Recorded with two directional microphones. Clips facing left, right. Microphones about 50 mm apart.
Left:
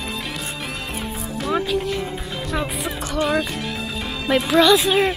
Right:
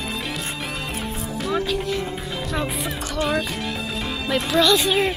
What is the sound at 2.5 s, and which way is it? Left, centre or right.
Speech, centre.